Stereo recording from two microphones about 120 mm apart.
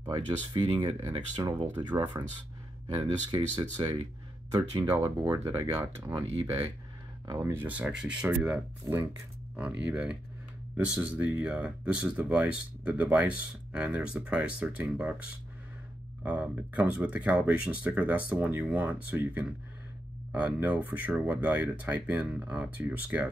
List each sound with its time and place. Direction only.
0.0 s speech: 40° right (ahead or behind)
3.3 s speech: 40° right (ahead or behind)
4.8 s speech: 15° right (ahead or behind)
5.3 s speech: 25° right (ahead or behind)
7.6 s speech: 10° right (ahead or behind)
8.9 s speech: 25° right (ahead or behind)
9.6 s speech: 10° right (ahead or behind)
16.2 s speech: 10° right (ahead or behind)